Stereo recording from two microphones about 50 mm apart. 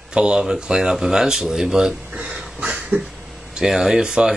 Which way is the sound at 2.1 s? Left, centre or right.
Right.